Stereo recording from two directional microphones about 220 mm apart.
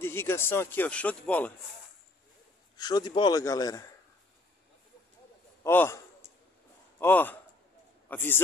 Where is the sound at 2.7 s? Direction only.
20° left (ahead or behind).